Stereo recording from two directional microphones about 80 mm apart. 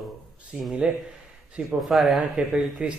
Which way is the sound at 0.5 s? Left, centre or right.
Centre.